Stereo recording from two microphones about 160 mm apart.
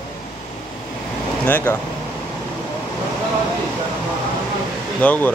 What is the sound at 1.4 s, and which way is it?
Speech, 10° left (ahead or behind).